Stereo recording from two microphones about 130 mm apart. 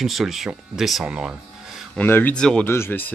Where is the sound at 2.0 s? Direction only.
15° left (ahead or behind).